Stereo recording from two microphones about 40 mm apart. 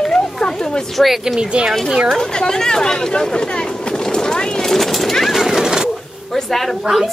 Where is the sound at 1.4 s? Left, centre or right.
Right.